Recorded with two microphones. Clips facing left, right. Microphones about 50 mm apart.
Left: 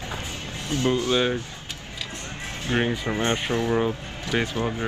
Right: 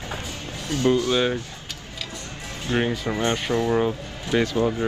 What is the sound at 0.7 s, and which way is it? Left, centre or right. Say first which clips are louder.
Speech: right 2 dB; left.